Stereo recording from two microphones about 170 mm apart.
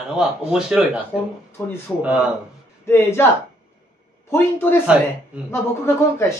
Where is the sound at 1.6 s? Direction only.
10° left (ahead or behind).